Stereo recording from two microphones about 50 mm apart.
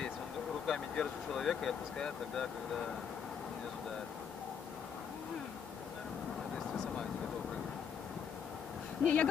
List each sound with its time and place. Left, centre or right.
0.7 s speech: centre
9.0 s speech: left